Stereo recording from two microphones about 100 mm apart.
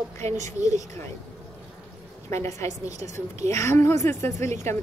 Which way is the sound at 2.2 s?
30° left (ahead or behind).